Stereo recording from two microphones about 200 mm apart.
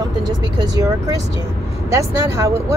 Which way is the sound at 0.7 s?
15° right (ahead or behind).